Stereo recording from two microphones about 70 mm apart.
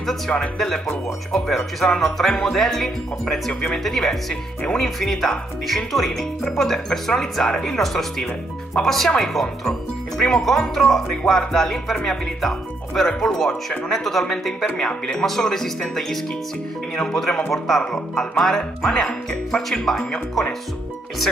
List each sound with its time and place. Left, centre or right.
0.3 s speech: left
1.8 s speech: centre
14.8 s music: centre